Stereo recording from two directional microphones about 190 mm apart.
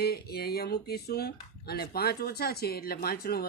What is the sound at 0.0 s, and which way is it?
Speech, 55° left (ahead or behind).